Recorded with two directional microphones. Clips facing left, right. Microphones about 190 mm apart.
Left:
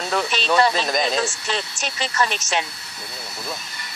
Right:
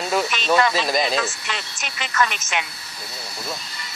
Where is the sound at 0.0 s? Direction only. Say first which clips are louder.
Right 1 dB; 5° right (ahead or behind).